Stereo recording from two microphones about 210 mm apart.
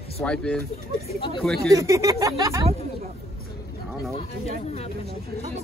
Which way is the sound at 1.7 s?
15° right (ahead or behind).